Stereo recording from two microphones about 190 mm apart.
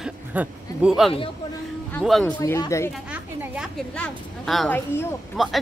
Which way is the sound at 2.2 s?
15° left (ahead or behind).